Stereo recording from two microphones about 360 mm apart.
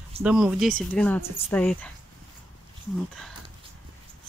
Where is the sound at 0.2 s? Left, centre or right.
Centre.